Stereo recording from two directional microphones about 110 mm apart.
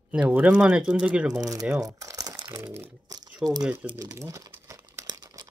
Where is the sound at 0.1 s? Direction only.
15° right (ahead or behind).